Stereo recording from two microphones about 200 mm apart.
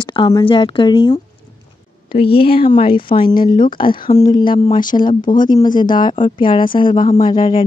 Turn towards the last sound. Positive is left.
turn(degrees=20)  # may be behind; listen again after turning